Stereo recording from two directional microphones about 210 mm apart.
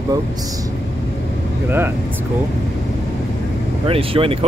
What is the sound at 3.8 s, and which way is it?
Speech, 25° right (ahead or behind).